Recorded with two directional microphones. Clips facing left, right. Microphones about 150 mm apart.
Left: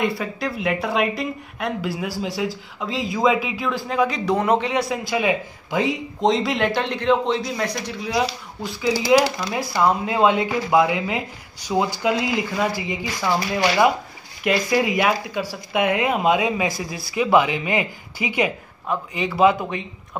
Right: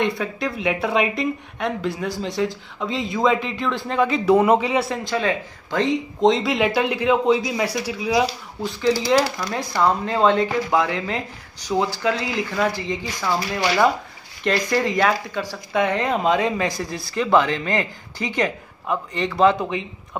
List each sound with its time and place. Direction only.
0.0 s a woman's voice: centre (ahead or behind)